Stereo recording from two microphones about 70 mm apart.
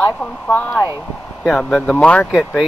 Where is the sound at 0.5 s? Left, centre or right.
Left.